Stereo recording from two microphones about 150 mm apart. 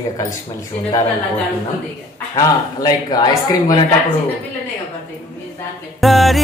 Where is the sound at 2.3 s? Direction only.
25° left (ahead or behind).